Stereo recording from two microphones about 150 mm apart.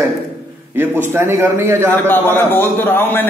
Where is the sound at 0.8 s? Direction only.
15° right (ahead or behind).